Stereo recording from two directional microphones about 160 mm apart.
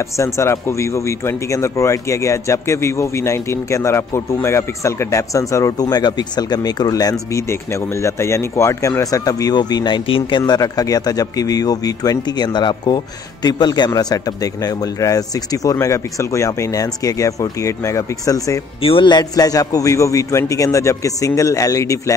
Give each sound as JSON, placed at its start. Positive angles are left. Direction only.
{"t": 0.0, "sound": "speech", "side_deg": 20}
{"t": 18.8, "sound": "speech", "side_deg": 35}